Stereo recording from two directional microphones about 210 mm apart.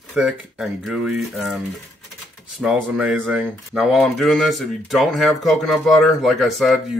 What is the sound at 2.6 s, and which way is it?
Speech, 5° right (ahead or behind).